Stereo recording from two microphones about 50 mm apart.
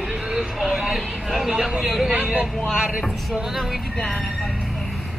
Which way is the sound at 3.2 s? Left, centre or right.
Centre.